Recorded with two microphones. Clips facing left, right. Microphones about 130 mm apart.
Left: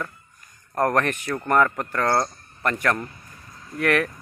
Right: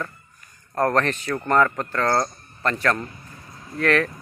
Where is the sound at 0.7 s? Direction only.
10° left (ahead or behind).